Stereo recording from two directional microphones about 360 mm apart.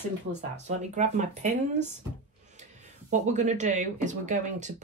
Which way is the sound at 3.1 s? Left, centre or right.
Centre.